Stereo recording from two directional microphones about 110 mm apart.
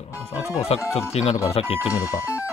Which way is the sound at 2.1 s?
25° left (ahead or behind).